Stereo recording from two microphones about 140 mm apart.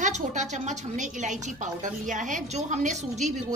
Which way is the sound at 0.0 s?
60° right (ahead or behind).